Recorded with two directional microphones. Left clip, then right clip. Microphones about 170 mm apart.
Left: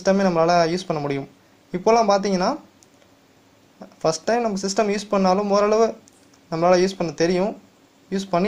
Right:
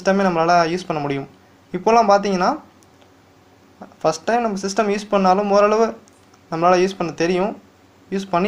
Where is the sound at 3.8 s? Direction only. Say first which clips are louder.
Right 2 dB; 30° left (ahead or behind).